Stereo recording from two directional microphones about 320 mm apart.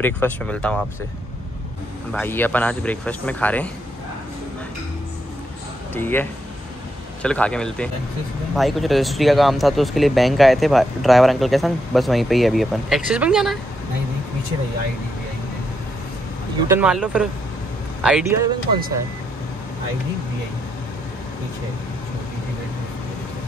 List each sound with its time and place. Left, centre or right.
0.0 s speech: centre
2.1 s speech: centre
5.9 s speech: centre
16.6 s speech: centre